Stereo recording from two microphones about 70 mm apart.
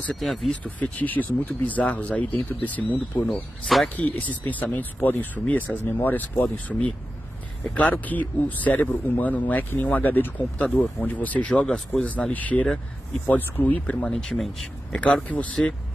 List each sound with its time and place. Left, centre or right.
0.2 s speech: centre
0.5 s speech: left
3.6 s speech: centre
3.9 s speech: left
14.1 s speech: centre